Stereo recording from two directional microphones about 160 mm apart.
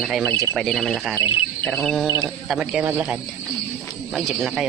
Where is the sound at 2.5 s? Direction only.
5° right (ahead or behind).